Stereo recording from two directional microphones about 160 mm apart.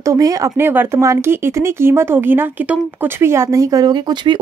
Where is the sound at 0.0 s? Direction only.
20° right (ahead or behind).